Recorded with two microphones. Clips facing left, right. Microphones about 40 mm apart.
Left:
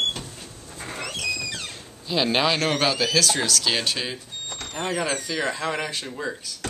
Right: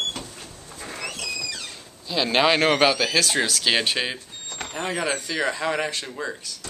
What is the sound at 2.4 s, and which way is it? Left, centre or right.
Speech, centre.